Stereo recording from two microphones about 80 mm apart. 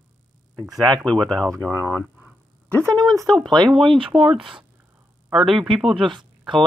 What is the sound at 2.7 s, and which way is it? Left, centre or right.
Speech, right.